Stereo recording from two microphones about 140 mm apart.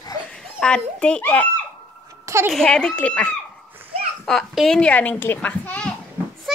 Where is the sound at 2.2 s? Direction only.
20° right (ahead or behind).